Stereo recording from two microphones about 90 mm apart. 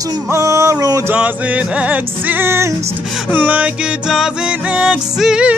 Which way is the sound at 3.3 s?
15° right (ahead or behind).